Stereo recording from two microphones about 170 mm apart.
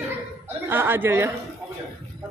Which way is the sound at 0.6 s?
10° right (ahead or behind).